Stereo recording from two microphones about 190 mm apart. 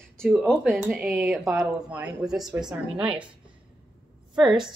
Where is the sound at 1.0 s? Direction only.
15° right (ahead or behind).